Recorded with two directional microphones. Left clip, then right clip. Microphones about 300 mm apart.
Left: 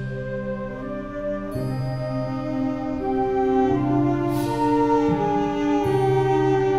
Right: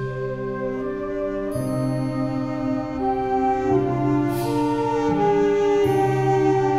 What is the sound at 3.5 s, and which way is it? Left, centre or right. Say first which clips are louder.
Music: left 1 dB; right.